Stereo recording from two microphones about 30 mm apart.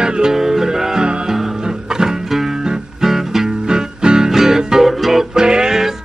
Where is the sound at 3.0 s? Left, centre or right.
Centre.